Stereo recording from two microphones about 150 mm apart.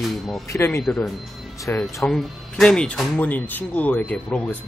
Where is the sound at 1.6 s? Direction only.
20° left (ahead or behind).